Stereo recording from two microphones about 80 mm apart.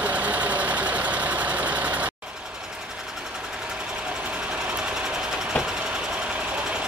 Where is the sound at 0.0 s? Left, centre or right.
Centre.